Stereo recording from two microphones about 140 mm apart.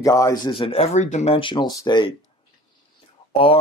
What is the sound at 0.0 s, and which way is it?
Speech, 25° left (ahead or behind).